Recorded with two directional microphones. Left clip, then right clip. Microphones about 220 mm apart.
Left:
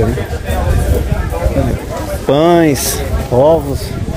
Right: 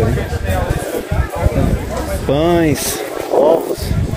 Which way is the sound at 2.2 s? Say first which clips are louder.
Left 5 dB; 30° left (ahead or behind).